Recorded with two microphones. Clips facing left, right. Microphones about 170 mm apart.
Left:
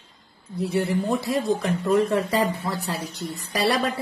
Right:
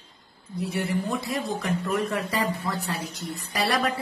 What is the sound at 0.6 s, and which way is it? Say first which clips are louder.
Speech: left 4 dB; 30° left (ahead or behind).